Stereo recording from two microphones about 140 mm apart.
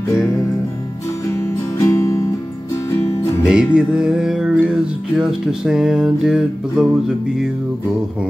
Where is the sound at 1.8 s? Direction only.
20° left (ahead or behind).